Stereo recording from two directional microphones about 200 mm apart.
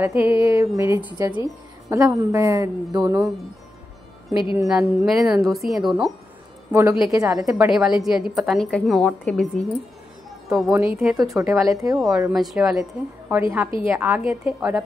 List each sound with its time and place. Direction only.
0.0 s speech: 10° right (ahead or behind)
4.6 s a woman's voice: centre (ahead or behind)
6.7 s speech: 15° right (ahead or behind)
7.5 s a woman's voice: 5° right (ahead or behind)
11.1 s speech: 15° right (ahead or behind)
12.2 s a woman's voice: 5° right (ahead or behind)
13.4 s speech: 10° right (ahead or behind)